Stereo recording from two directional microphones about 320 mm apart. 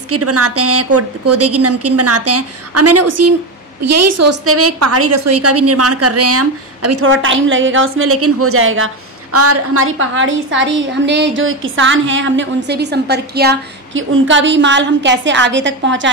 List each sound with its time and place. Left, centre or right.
0.1 s a woman's voice: right